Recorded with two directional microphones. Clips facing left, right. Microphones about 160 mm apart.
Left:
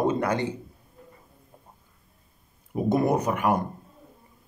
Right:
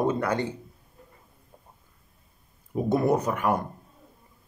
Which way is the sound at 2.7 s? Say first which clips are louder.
Even; 15° left (ahead or behind).